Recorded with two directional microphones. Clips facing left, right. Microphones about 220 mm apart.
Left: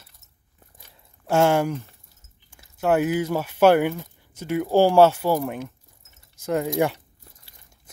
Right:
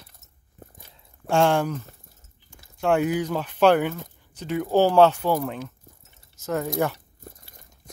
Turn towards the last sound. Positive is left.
turn(degrees=15)  # may be behind; listen again after turning